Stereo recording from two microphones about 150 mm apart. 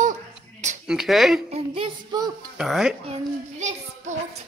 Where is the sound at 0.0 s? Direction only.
55° right (ahead or behind).